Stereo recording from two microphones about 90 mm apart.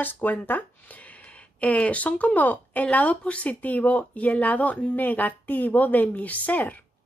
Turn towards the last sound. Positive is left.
turn(degrees=20)  # may be behind; listen again after turning